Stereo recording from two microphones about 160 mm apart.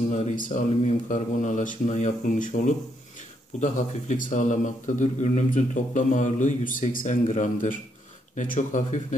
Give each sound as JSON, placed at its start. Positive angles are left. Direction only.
{"t": 0.1, "sound": "speech", "side_deg": 50}